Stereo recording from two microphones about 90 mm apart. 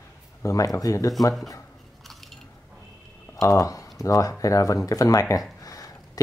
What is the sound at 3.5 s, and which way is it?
Speech, 40° left (ahead or behind).